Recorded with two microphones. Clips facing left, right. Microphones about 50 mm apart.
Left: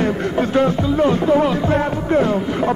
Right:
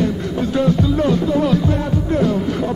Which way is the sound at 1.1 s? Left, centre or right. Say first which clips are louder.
Left 1 dB; left.